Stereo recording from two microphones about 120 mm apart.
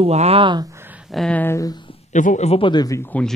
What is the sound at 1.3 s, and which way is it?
Speech, 20° left (ahead or behind).